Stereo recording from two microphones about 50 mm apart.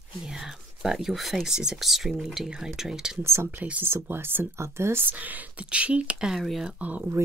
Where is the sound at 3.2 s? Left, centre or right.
Right.